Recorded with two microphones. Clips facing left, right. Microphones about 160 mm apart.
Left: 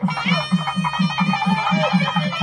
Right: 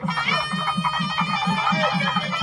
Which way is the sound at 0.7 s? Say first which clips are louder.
Left 5 dB; 20° left (ahead or behind).